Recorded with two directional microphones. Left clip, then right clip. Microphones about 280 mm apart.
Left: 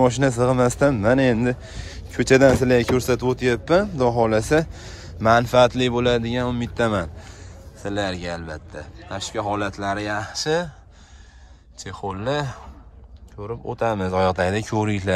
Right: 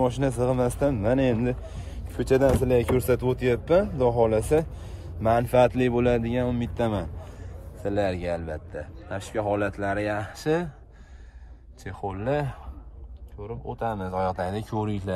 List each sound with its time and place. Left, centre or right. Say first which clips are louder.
0.0 s speech: left 6 dB; centre
11.8 s speech: left 4 dB; centre